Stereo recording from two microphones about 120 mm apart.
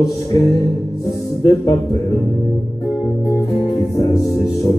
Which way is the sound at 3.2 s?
30° left (ahead or behind).